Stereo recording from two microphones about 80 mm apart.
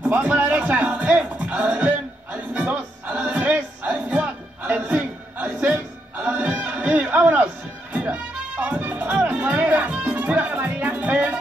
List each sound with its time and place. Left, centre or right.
0.0 s music: right